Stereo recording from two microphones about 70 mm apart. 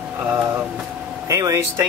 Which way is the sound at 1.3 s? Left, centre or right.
Right.